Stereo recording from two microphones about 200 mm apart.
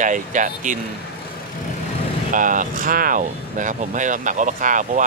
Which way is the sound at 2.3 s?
40° right (ahead or behind).